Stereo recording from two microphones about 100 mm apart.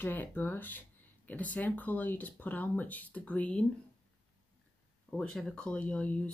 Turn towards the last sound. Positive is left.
turn(degrees=15)  # may be behind; listen again after turning